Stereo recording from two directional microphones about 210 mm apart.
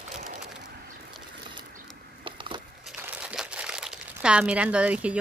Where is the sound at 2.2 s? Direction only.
25° right (ahead or behind).